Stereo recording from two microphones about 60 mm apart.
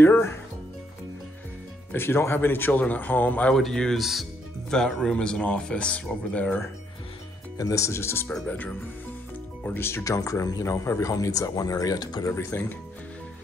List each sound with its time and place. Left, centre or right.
0.0 s speech: left
1.9 s speech: left
3.5 s speech: centre
4.0 s speech: centre
4.6 s speech: centre
7.5 s speech: left
8.5 s speech: left
9.7 s speech: left
10.0 s speech: left
12.3 s speech: left